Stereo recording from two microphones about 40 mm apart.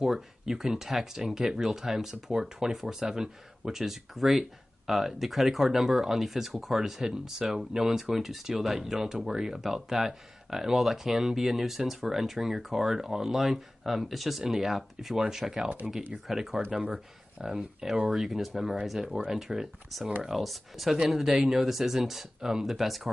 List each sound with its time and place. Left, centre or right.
0.0 s speech: centre
16.9 s speech: right; by 21.0 s centre
21.3 s speech: centre
22.7 s speech: centre